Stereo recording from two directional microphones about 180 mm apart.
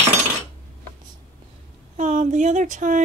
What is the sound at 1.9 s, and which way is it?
Speech, 40° right (ahead or behind).